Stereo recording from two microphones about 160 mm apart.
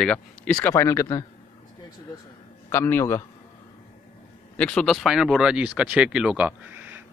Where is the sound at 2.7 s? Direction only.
15° left (ahead or behind).